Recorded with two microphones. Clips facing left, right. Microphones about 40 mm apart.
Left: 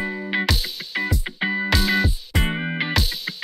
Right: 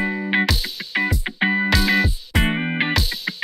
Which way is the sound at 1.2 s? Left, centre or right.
Right.